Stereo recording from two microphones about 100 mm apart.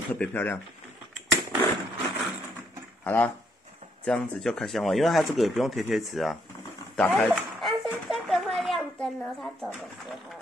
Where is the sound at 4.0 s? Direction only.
5° left (ahead or behind).